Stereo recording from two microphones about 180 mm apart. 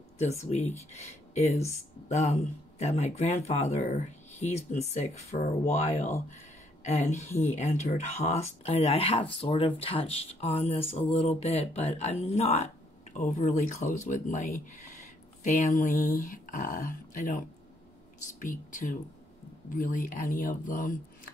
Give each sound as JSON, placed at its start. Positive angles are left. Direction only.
{"t": 0.2, "sound": "speech", "side_deg": 40}
{"t": 6.3, "sound": "a sound", "side_deg": 40}
{"t": 7.5, "sound": "speech", "side_deg": 40}
{"t": 18.4, "sound": "speech", "side_deg": 45}